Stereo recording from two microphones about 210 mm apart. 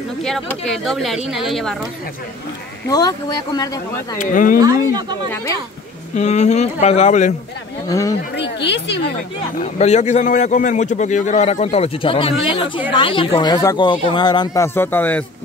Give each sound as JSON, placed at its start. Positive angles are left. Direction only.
{"t": 0.2, "sound": "speech", "side_deg": 0}
{"t": 2.9, "sound": "speech", "side_deg": 15}
{"t": 4.2, "sound": "a man's voice", "side_deg": 40}
{"t": 4.6, "sound": "speech", "side_deg": -20}
{"t": 6.1, "sound": "a man's voice", "side_deg": 35}
{"t": 7.9, "sound": "speech", "side_deg": 15}
{"t": 8.4, "sound": "speech", "side_deg": 55}
{"t": 9.8, "sound": "a man's voice", "side_deg": 30}